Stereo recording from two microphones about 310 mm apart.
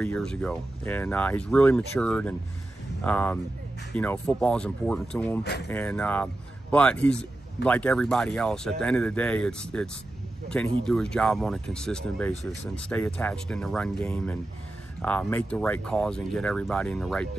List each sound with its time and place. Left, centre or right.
0.0 s speech: centre
5.4 s speech: left
5.7 s speech: centre